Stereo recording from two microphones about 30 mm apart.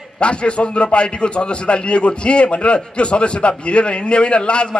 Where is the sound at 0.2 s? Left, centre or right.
Left.